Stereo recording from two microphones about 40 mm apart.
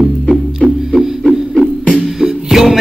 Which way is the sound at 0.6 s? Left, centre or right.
Left.